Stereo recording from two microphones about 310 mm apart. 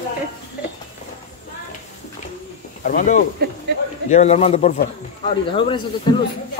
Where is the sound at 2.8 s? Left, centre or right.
Left.